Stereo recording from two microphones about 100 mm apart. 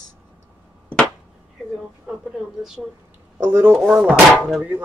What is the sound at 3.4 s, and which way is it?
Speech, 20° right (ahead or behind).